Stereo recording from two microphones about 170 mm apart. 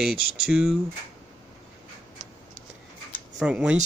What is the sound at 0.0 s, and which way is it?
Speech, 5° right (ahead or behind).